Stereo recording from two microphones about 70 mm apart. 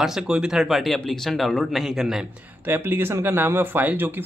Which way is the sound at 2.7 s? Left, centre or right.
Right.